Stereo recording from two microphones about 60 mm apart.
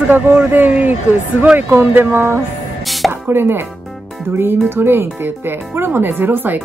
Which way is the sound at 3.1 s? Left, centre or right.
Right.